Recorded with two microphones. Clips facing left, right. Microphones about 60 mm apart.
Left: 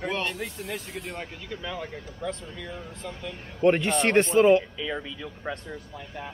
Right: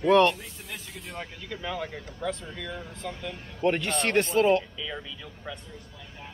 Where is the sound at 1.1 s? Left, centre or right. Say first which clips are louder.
Right 2 dB; centre.